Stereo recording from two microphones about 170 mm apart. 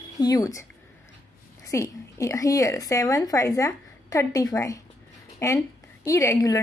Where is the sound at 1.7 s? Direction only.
20° left (ahead or behind).